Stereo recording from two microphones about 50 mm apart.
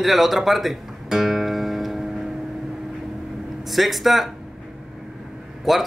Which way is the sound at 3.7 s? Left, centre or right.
Centre.